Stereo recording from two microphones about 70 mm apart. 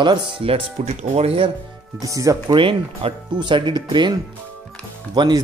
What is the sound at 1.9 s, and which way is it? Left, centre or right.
Speech, right.